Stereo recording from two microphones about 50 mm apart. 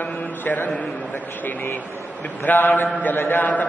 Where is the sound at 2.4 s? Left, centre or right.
Left.